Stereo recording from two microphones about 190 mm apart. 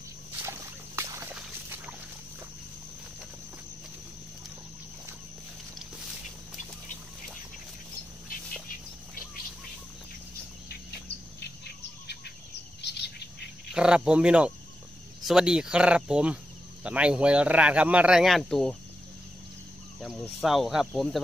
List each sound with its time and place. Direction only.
0.5 s a sound: 15° right (ahead or behind)
11.3 s bird: 60° left (ahead or behind)
12.8 s cricket: 60° left (ahead or behind)
13.7 s a man's voice: 5° right (ahead or behind)
20.0 s a man's voice: centre (ahead or behind)